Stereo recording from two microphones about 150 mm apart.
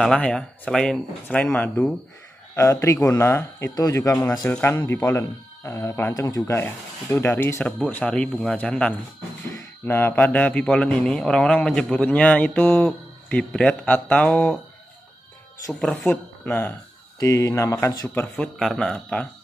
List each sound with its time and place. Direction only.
0.0 s a man's voice: 5° left (ahead or behind)
2.5 s a man's voice: 20° left (ahead or behind)
15.7 s a man's voice: 5° left (ahead or behind)
18.1 s speech: 5° left (ahead or behind)